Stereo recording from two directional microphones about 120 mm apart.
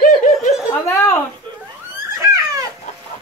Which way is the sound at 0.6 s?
25° left (ahead or behind).